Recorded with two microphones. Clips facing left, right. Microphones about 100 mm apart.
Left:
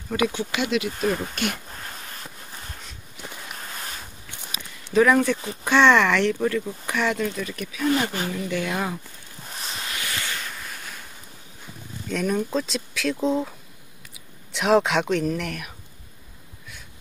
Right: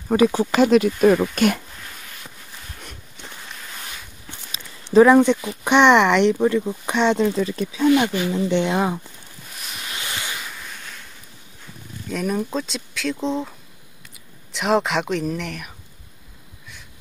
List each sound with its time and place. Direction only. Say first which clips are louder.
0.1 s speech: right 7 dB; 35° right (ahead or behind)
4.5 s a sound: right 5 dB; 30° right (ahead or behind)
5.6 s speech: right 3 dB; 20° right (ahead or behind)
9.6 s ocean: left 2 dB; 30° left (ahead or behind)
9.9 s waves: right 2 dB; 25° right (ahead or behind)
10.7 s a sound: even; 5° left (ahead or behind)
12.1 s speech: even; 5° right (ahead or behind)